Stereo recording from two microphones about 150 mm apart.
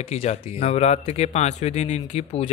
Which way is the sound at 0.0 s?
45° left (ahead or behind).